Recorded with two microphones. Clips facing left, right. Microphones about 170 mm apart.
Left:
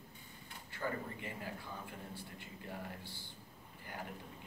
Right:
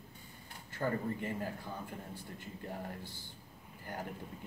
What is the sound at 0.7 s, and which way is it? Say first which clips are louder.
Speech: right 6 dB; 45° right (ahead or behind).